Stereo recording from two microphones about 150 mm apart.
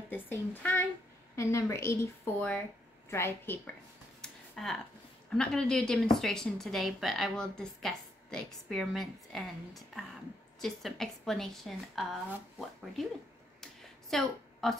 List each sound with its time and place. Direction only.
0.1 s a child's voice: 10° left (ahead or behind)
4.2 s a sound: centre (ahead or behind)
5.3 s a woman's voice: 5° left (ahead or behind)
14.1 s a woman's voice: centre (ahead or behind)